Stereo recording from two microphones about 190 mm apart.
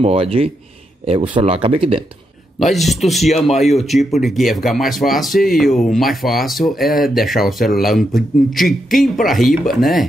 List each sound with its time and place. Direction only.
0.0 s speech: 30° right (ahead or behind)
2.6 s speech: centre (ahead or behind)